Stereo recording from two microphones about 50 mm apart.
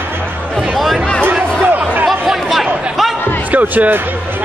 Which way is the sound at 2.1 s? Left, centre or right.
Centre.